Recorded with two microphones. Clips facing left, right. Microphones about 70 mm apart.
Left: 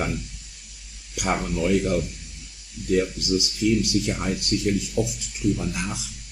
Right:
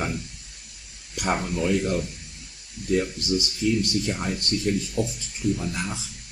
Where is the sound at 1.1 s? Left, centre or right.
Centre.